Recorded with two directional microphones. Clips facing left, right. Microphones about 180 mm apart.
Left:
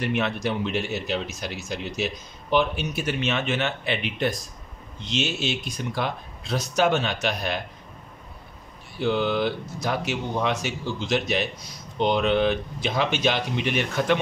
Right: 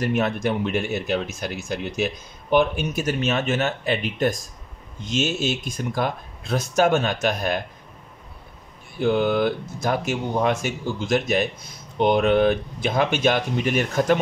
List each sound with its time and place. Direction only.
0.0 s speech: 45° right (ahead or behind)
9.0 s speech: 50° right (ahead or behind)